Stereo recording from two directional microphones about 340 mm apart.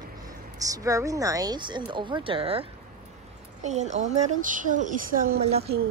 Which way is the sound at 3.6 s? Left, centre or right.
Centre.